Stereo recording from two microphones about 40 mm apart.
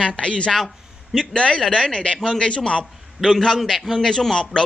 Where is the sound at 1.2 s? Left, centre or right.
Left.